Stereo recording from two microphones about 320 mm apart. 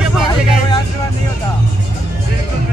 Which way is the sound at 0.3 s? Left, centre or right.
Centre.